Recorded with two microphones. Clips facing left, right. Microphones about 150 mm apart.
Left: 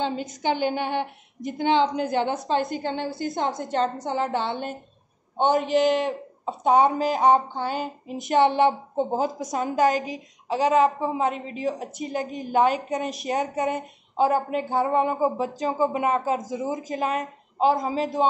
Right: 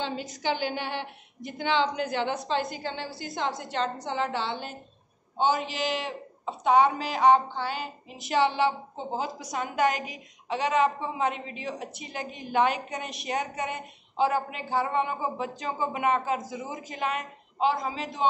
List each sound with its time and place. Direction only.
0.4 s a woman's voice: 50° left (ahead or behind)
10.5 s a woman's voice: 40° left (ahead or behind)